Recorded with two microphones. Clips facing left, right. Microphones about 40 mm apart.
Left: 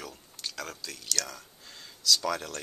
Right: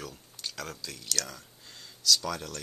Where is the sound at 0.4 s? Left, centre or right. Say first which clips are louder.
Even; centre.